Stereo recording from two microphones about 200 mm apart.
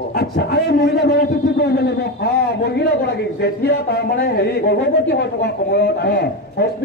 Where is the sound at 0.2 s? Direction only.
55° left (ahead or behind).